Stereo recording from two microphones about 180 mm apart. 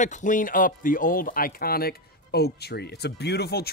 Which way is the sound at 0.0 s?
45° left (ahead or behind).